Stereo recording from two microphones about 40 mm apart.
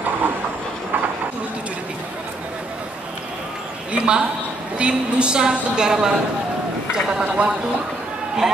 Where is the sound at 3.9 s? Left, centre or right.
Right.